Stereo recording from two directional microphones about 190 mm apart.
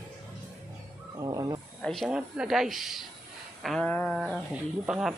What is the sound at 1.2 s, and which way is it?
Wild animals, 20° right (ahead or behind).